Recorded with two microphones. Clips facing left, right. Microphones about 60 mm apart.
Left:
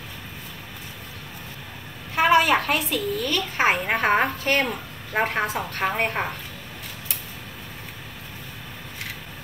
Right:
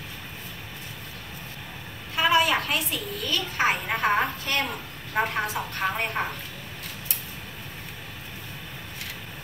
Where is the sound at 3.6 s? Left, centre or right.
Left.